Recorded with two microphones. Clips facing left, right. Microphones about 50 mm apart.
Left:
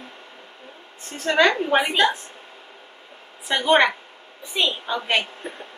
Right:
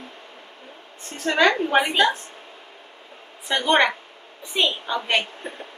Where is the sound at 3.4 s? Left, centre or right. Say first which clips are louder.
Left 1 dB; centre.